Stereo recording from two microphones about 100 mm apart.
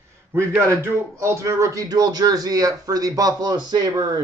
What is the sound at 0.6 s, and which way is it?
Speech, 25° right (ahead or behind).